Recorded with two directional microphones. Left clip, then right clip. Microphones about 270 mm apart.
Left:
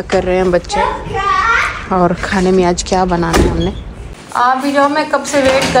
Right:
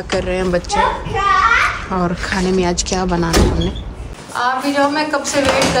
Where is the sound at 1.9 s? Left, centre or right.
Centre.